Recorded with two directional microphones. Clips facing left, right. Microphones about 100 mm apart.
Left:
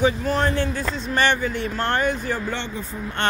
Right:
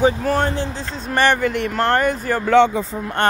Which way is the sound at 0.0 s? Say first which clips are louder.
Right 3 dB; 40° right (ahead or behind).